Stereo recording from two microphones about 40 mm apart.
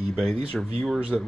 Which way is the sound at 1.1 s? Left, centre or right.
Centre.